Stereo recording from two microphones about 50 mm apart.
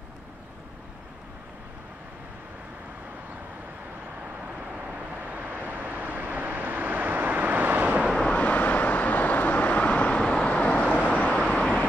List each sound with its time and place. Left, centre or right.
4.7 s vehicle: right
8.3 s vehicle: left
11.3 s vehicle: centre